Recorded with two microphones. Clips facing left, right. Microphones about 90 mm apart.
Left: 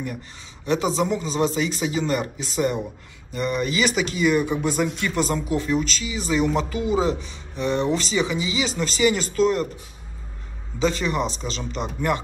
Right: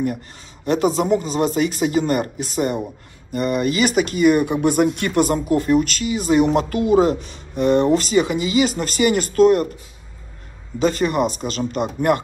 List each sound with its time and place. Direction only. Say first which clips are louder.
0.7 s speech: right 4 dB; 50° right (ahead or behind)
10.8 s speech: right 5 dB; 50° right (ahead or behind)